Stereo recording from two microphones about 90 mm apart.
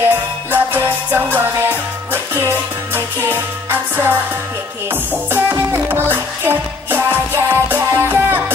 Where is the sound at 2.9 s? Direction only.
25° right (ahead or behind).